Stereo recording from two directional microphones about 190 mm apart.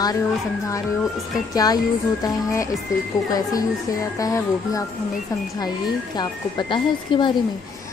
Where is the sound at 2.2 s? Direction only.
15° left (ahead or behind).